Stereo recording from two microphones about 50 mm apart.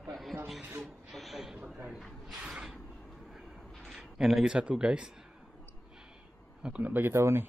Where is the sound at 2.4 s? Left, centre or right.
Centre.